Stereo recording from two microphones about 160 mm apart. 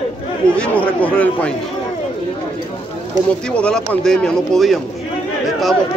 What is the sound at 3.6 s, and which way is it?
Speech, 5° left (ahead or behind).